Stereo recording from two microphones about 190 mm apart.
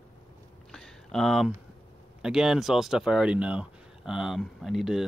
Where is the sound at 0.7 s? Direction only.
Centre (ahead or behind).